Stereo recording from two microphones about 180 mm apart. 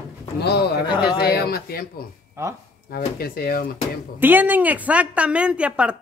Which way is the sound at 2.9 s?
55° left (ahead or behind).